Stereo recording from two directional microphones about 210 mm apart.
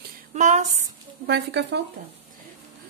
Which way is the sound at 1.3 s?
50° right (ahead or behind).